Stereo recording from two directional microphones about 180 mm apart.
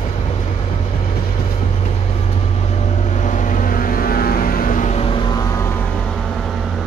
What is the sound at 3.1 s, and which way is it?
Vehicle, 45° left (ahead or behind).